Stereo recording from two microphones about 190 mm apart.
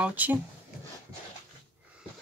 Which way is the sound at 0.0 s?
10° right (ahead or behind).